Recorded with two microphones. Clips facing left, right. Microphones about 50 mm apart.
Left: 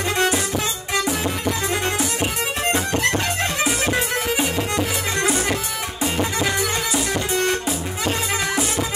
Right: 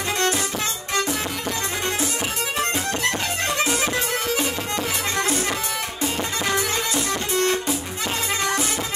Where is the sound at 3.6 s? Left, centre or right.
Centre.